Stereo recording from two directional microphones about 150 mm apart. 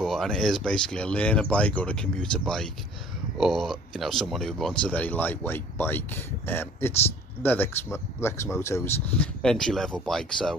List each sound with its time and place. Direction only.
0.0 s speech: centre (ahead or behind)
9.4 s speech: 5° left (ahead or behind)